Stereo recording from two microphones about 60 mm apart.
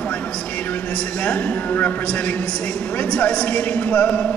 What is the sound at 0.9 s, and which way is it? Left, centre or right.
A man's voice, centre.